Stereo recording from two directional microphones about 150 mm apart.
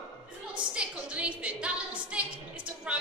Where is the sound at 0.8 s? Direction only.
5° right (ahead or behind).